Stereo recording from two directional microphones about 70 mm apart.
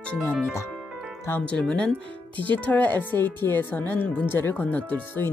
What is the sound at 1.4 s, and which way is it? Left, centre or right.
A woman's voice, centre.